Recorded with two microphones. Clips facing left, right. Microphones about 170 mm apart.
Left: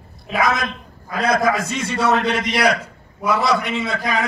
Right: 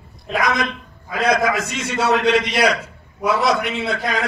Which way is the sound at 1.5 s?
65° right (ahead or behind).